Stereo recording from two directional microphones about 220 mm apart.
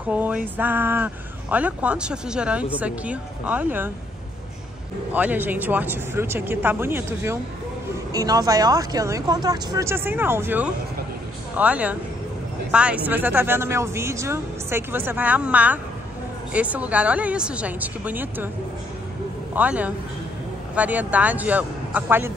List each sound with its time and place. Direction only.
0.0 s a sound: 5° right (ahead or behind)
0.6 s speech: 10° right (ahead or behind)
5.1 s speech: 5° right (ahead or behind)
19.5 s speech: 5° right (ahead or behind)